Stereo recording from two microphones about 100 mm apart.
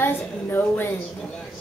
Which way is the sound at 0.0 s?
20° left (ahead or behind).